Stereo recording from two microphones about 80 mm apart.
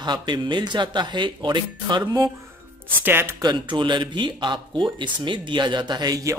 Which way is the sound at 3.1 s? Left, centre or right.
Right.